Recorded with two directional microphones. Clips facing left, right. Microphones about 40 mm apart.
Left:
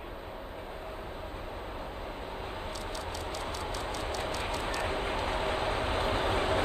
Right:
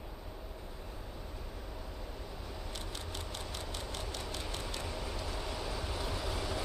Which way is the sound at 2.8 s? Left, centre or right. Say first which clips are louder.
Left 7 dB; left.